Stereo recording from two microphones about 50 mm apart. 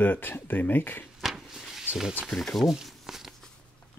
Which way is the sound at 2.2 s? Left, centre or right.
Centre.